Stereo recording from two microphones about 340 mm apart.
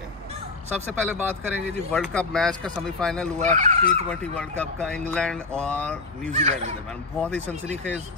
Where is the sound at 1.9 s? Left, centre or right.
Centre.